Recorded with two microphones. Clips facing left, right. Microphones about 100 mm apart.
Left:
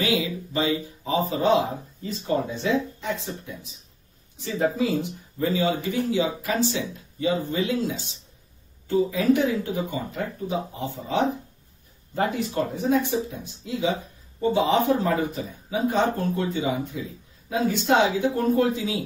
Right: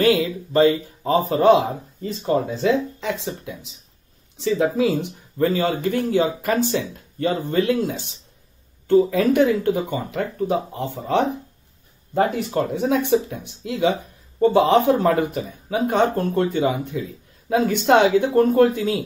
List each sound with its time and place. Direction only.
0.0 s a man's voice: 55° right (ahead or behind)
2.6 s speech: 85° right
5.4 s speech: 55° right (ahead or behind)